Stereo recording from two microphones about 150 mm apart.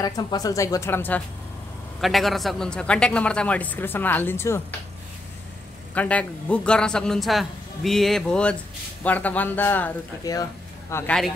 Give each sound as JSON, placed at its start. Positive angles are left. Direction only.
{"t": 0.0, "sound": "speech", "side_deg": 25}
{"t": 2.0, "sound": "a man's voice", "side_deg": 0}
{"t": 5.9, "sound": "a man's voice", "side_deg": 10}
{"t": 10.3, "sound": "a man's voice", "side_deg": 25}